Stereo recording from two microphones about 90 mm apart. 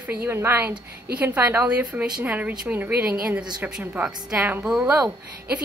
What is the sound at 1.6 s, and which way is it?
A woman's voice, 15° right (ahead or behind).